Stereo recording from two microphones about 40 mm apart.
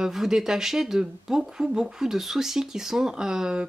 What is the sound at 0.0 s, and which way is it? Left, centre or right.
Speech, centre.